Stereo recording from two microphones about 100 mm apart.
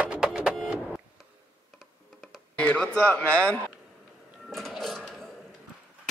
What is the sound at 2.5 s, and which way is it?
Speech, 15° left (ahead or behind).